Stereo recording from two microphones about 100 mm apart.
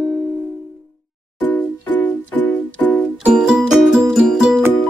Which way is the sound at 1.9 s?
15° left (ahead or behind).